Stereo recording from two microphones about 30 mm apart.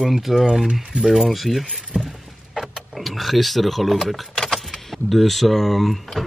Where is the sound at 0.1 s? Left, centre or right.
Centre.